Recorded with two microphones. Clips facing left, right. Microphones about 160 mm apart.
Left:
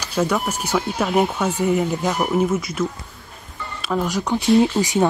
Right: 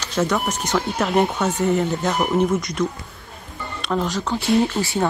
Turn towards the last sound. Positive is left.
turn(degrees=15)  # may be behind; listen again after turning